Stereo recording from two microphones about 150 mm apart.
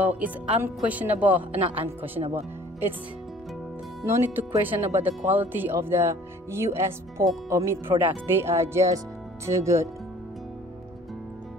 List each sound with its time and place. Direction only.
0.0 s speech: 10° right (ahead or behind)
2.2 s speech: 35° right (ahead or behind)
4.0 s speech: 15° right (ahead or behind)